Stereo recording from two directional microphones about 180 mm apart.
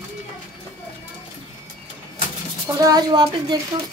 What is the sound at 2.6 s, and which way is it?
Speech, 20° right (ahead or behind).